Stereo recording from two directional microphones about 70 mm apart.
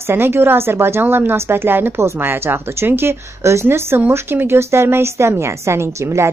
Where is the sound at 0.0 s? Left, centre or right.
Right.